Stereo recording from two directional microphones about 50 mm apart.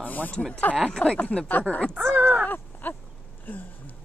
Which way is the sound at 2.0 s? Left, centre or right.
Right.